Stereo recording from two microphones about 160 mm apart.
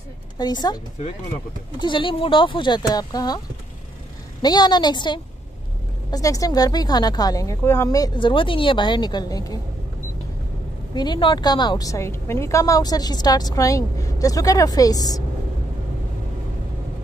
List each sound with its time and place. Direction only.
0.4 s a woman's voice: 25° left (ahead or behind)
1.8 s a woman's voice: 30° left (ahead or behind)
4.4 s a woman's voice: 25° left (ahead or behind)
11.0 s a woman's voice: 30° left (ahead or behind)